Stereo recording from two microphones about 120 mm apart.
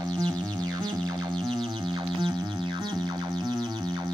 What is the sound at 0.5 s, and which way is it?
Music, 35° right (ahead or behind).